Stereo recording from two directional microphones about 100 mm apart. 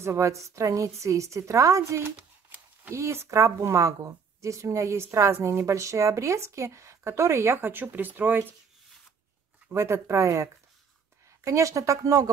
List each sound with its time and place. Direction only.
0.0 s a woman's voice: 30° right (ahead or behind)
2.1 s shuffling cards: 15° right (ahead or behind)
2.9 s speech: 30° right (ahead or behind)
9.7 s a woman's voice: 30° right (ahead or behind)